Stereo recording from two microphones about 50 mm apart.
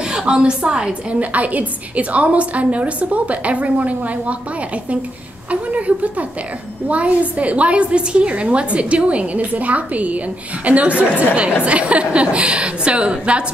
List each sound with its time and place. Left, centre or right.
0.1 s a woman's voice: centre
1.2 s a woman's voice: right
5.5 s a woman's voice: right